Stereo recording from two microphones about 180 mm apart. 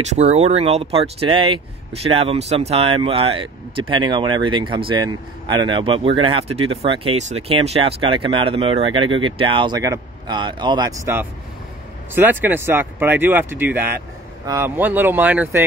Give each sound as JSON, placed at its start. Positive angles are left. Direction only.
{"t": 0.1, "sound": "speech", "side_deg": -35}